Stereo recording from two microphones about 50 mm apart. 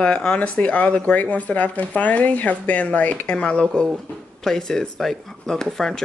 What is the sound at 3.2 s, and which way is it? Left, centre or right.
Speech, left.